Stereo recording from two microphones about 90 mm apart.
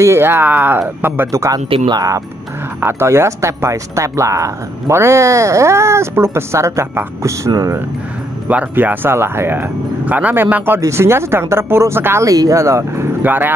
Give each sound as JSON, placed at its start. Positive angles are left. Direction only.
{"t": 0.0, "sound": "speech", "side_deg": -30}
{"t": 1.9, "sound": "speech", "side_deg": -40}
{"t": 2.8, "sound": "speech", "side_deg": -25}
{"t": 8.5, "sound": "speech", "side_deg": -15}
{"t": 12.3, "sound": "speech", "side_deg": -40}